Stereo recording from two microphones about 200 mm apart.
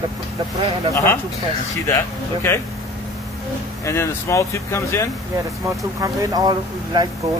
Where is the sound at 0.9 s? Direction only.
10° left (ahead or behind).